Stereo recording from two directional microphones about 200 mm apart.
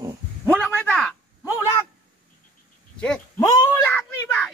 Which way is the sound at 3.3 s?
15° left (ahead or behind).